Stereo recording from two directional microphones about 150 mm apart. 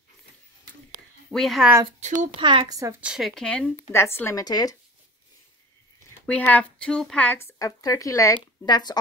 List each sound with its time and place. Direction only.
1.3 s speech: centre (ahead or behind)
1.9 s speech: 50° right (ahead or behind)
2.3 s speech: 35° right (ahead or behind)
3.0 s speech: 5° right (ahead or behind); by 4.7 s 25° left (ahead or behind)
6.0 s speech: 10° left (ahead or behind); by 8.9 s 30° left (ahead or behind)